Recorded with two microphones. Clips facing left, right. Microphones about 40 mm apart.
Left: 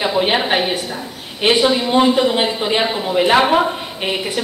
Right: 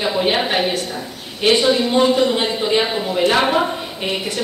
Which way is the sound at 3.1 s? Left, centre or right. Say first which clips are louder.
Left 3 dB; centre.